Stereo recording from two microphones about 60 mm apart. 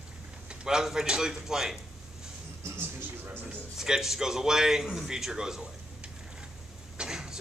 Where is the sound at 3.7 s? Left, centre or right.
Centre.